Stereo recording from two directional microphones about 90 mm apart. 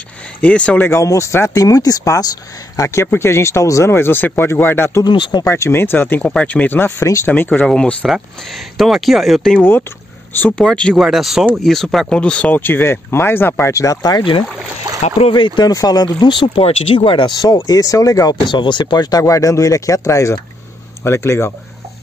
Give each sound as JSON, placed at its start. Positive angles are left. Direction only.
{"t": 0.4, "sound": "speech", "side_deg": 15}
{"t": 0.8, "sound": "speech", "side_deg": 35}
{"t": 5.0, "sound": "speech", "side_deg": 60}
{"t": 5.4, "sound": "speech", "side_deg": 30}
{"t": 8.1, "sound": "speech", "side_deg": 0}
{"t": 9.6, "sound": "speech", "side_deg": 25}
{"t": 10.5, "sound": "speech", "side_deg": 5}
{"t": 15.1, "sound": "speech", "side_deg": 75}
{"t": 15.7, "sound": "speech", "side_deg": 45}
{"t": 17.6, "sound": "speech", "side_deg": 40}
{"t": 18.5, "sound": "speech", "side_deg": 60}